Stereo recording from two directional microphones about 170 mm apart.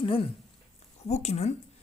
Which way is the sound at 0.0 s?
30° left (ahead or behind).